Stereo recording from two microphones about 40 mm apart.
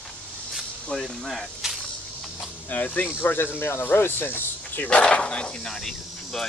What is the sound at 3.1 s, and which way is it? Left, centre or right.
Speech, left.